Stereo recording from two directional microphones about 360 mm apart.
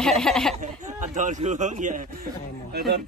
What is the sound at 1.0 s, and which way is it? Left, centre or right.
Speech, right.